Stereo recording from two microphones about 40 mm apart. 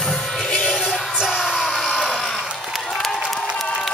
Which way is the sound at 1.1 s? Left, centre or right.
Centre.